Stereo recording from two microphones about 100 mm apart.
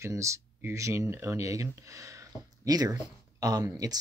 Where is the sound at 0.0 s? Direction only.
30° right (ahead or behind).